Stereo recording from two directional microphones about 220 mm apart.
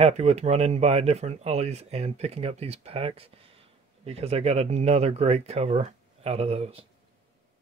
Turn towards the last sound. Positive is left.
turn(degrees=-25)  # may be behind; listen again after turning